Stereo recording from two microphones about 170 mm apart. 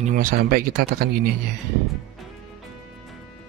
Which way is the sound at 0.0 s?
55° right (ahead or behind).